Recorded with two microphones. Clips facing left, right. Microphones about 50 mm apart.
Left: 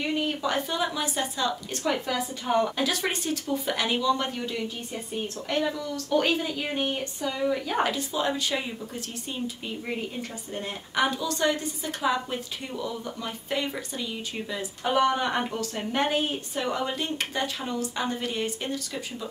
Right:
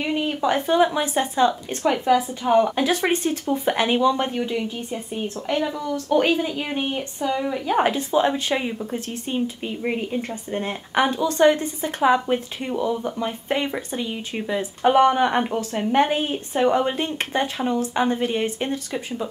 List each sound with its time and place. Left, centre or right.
0.0 s a woman's voice: right
5.9 s a woman's voice: right
10.5 s a woman's voice: right